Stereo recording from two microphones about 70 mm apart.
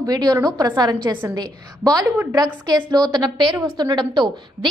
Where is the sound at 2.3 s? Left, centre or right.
Right.